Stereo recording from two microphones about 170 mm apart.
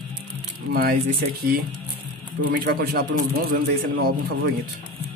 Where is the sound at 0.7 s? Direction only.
65° right (ahead or behind).